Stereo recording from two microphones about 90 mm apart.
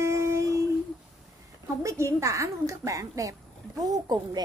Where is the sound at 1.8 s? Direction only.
35° right (ahead or behind).